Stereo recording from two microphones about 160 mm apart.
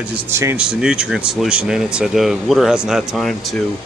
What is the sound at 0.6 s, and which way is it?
Speech, 5° right (ahead or behind).